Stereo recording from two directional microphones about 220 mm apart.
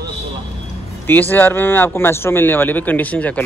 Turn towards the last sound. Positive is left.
turn(degrees=5)  # may be behind; listen again after turning